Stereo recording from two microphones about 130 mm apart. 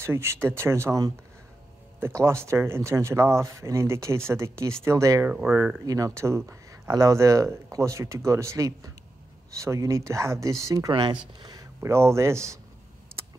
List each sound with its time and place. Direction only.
0.0 s speech: 20° right (ahead or behind)
10.9 s speech: 40° right (ahead or behind)
11.8 s speech: 20° right (ahead or behind)